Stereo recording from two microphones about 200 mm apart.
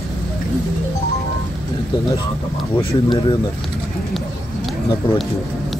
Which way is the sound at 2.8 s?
25° left (ahead or behind).